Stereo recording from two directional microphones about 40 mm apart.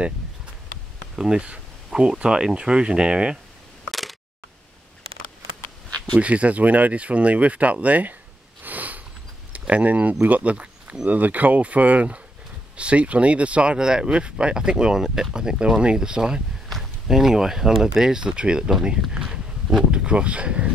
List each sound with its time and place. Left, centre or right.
1.1 s speech: centre
3.9 s single-lens reflex camera: centre
6.1 s speech: right
8.6 s sniff: right
9.5 s speech: right
11.1 s speech: right
13.7 s speech: centre
18.1 s speech: right